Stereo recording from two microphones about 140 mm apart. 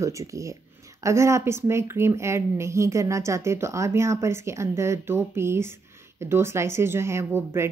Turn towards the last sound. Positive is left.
turn(degrees=-15)  # may be behind; listen again after turning